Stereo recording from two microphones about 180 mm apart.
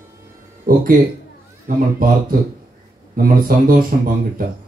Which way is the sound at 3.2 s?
50° right (ahead or behind).